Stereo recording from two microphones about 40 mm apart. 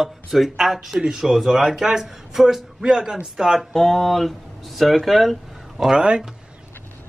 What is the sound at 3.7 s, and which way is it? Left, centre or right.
Speech, centre.